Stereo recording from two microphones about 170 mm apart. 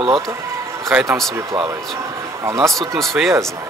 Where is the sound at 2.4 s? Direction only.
15° right (ahead or behind).